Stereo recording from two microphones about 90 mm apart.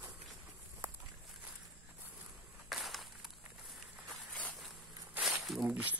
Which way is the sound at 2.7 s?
Centre (ahead or behind).